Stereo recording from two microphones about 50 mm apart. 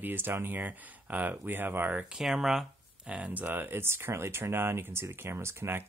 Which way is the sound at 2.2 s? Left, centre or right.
Centre.